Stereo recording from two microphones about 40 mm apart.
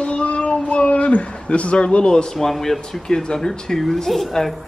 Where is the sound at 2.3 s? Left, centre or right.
Centre.